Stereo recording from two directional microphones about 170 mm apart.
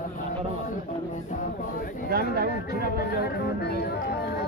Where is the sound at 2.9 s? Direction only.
65° left (ahead or behind).